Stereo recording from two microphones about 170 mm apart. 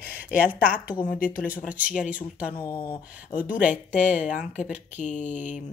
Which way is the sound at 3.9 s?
45° left (ahead or behind).